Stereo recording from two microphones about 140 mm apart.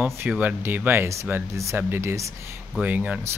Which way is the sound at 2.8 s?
10° right (ahead or behind).